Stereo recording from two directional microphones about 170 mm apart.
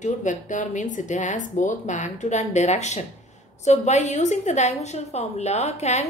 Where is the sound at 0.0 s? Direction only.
45° left (ahead or behind).